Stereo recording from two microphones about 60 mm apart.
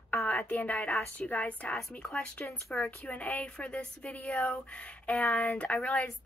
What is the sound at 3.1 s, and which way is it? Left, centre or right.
Speech, left.